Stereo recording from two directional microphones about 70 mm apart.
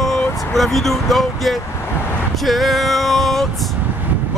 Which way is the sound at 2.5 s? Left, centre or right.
Centre.